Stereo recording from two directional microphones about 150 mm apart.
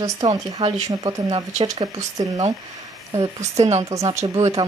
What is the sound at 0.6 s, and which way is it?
Speech, 50° right (ahead or behind).